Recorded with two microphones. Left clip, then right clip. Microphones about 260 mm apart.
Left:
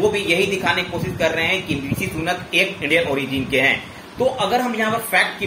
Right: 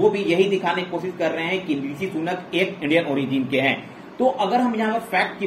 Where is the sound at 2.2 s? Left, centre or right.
Centre.